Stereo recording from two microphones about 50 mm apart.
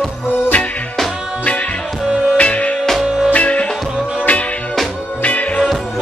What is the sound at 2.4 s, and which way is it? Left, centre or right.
Music, left.